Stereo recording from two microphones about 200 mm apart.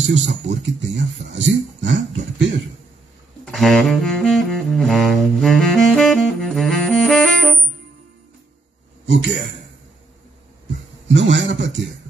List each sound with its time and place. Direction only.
0.0 s speech: 65° right (ahead or behind)
3.4 s saxophone: centre (ahead or behind)
9.1 s speech: 65° right (ahead or behind)
11.1 s speech: 65° right (ahead or behind)